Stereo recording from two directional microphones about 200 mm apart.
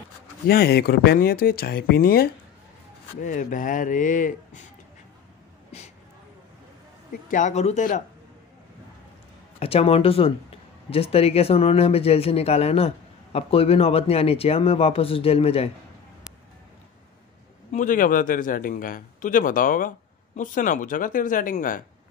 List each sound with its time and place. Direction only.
0.5 s a man's voice: 50° left (ahead or behind)
7.1 s speech: 40° left (ahead or behind)
9.6 s speech: 30° left (ahead or behind)
17.6 s a man's voice: 40° left (ahead or behind)